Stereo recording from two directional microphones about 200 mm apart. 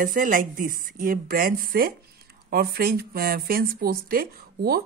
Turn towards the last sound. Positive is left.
turn(degrees=-50)  # may be behind; listen again after turning